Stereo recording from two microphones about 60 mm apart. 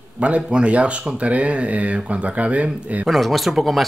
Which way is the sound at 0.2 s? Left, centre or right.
Centre.